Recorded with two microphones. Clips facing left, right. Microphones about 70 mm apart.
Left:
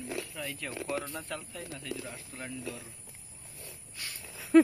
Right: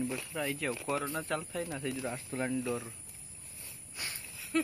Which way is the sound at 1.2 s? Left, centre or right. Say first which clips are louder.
Right 5 dB; centre.